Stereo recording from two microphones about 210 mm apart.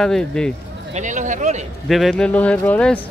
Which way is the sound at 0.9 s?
35° right (ahead or behind).